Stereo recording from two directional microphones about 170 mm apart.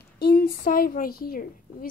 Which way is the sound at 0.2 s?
60° left (ahead or behind).